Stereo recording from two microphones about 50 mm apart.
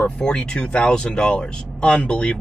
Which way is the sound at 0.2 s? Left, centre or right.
Centre.